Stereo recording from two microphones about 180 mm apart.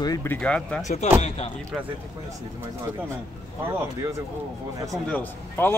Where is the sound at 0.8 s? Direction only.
40° left (ahead or behind).